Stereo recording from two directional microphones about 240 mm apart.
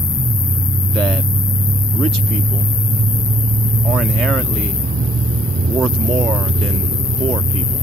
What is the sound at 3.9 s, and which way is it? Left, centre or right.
Speech, centre.